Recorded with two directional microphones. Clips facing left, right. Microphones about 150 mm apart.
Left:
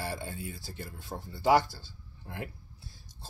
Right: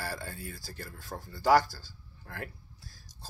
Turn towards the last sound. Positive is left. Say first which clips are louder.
# left 1 dB
turn(degrees=25)  # may be behind; listen again after turning